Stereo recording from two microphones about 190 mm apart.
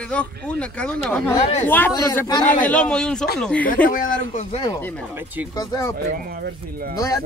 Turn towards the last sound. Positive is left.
turn(degrees=15)  # may be behind; listen again after turning